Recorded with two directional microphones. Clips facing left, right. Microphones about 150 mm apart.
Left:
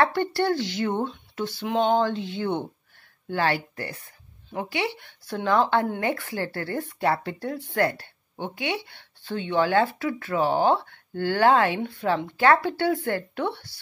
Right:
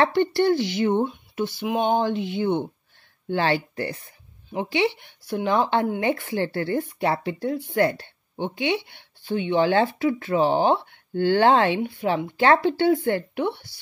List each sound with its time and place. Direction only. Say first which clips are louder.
0.0 s speech: right 3 dB; 20° right (ahead or behind)